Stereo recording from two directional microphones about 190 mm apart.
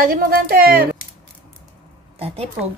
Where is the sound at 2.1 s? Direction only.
30° right (ahead or behind).